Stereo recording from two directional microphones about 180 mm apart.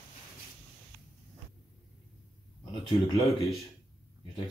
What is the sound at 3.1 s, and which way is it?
Speech, centre (ahead or behind).